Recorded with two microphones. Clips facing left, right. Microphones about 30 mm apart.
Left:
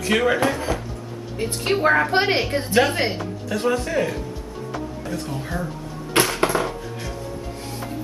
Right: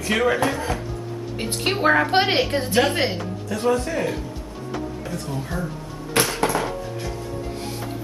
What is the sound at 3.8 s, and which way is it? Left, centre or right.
Speech, centre.